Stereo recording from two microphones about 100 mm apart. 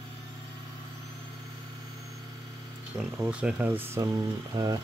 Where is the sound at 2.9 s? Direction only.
30° right (ahead or behind).